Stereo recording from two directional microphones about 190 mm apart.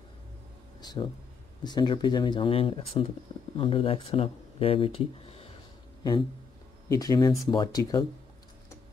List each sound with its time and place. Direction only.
0.7 s speech: 20° left (ahead or behind)
6.9 s speech: 20° left (ahead or behind)